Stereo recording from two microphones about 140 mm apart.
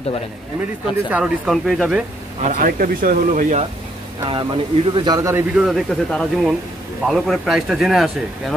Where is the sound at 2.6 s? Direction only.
85° right; by 3.6 s 65° right (ahead or behind).